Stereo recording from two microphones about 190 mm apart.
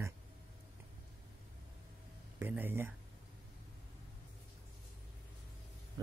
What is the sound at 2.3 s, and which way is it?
Speech, 10° right (ahead or behind).